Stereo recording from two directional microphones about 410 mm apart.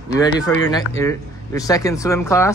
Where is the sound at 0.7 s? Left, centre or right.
Centre.